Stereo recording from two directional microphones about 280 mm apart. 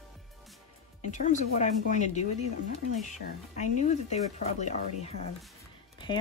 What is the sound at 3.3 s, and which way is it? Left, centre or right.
Speech, left.